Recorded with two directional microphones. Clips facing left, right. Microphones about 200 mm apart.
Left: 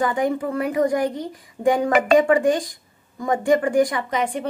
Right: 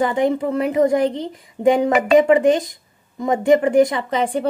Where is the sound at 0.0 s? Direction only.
25° right (ahead or behind).